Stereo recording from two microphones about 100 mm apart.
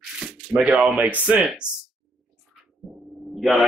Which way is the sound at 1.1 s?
10° right (ahead or behind).